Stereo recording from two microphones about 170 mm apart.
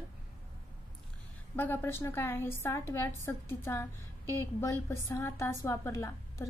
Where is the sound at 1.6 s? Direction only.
10° left (ahead or behind).